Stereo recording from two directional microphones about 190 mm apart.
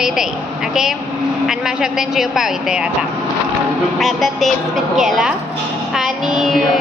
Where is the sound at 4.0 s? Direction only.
Centre (ahead or behind).